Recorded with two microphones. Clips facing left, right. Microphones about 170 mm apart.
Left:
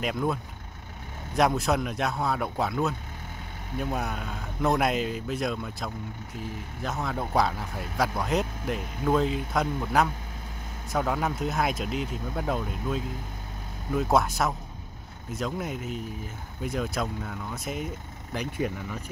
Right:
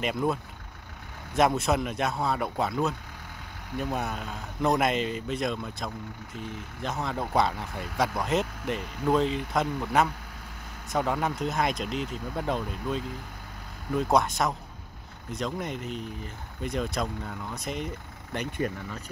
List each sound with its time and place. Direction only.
0.0 s speech: centre (ahead or behind)